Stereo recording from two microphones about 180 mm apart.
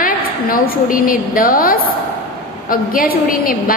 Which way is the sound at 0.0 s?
50° left (ahead or behind).